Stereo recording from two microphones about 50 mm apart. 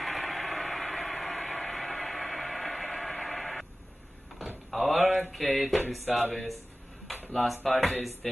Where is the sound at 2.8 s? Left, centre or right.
Centre.